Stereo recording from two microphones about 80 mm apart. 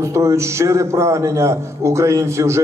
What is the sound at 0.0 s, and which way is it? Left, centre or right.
A man's voice, right.